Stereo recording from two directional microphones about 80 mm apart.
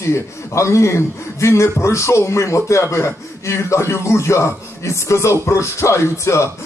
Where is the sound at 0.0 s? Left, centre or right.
Left.